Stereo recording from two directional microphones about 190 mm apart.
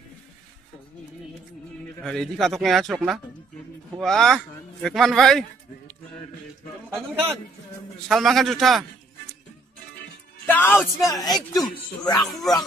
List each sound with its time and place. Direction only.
2.0 s speech: centre (ahead or behind)
8.1 s speech: centre (ahead or behind)
10.5 s speech: 10° left (ahead or behind)
11.1 s speech: 20° left (ahead or behind)
12.3 s speech: centre (ahead or behind)